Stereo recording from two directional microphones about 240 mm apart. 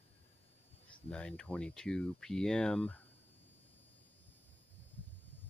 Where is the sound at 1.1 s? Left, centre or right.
Centre.